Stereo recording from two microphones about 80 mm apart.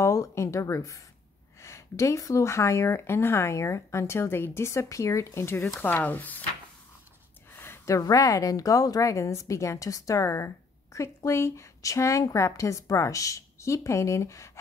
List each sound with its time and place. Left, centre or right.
0.0 s a woman's voice: left
7.5 s a woman's voice: left